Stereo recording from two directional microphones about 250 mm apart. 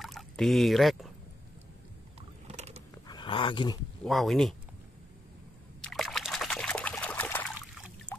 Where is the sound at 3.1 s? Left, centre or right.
Centre.